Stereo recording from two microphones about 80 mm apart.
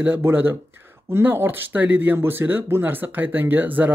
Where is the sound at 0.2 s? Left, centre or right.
Right.